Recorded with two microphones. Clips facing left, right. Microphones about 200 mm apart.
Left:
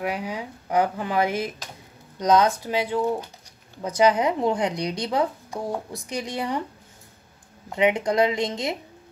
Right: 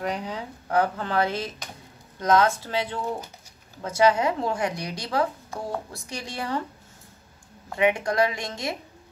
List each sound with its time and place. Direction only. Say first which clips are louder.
0.0 s speech: left 1 dB; 10° left (ahead or behind)
7.7 s speech: left 2 dB; 20° left (ahead or behind)